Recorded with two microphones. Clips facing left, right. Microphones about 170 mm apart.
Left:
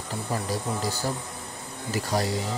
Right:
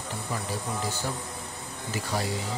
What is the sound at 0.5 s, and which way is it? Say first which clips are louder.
Speech: left 3 dB; 40° left (ahead or behind).